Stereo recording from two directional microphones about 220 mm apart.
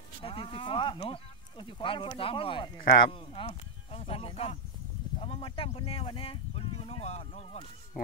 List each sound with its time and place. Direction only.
0.2 s speech: 25° left (ahead or behind)